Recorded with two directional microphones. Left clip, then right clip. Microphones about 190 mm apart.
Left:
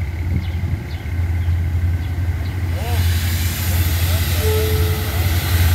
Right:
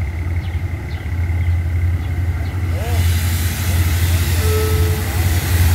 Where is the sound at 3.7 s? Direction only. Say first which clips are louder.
Right 1 dB; centre (ahead or behind).